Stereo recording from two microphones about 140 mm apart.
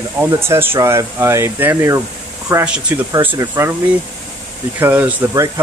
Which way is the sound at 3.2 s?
15° right (ahead or behind).